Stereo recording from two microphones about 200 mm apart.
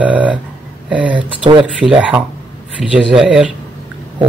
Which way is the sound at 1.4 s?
25° right (ahead or behind).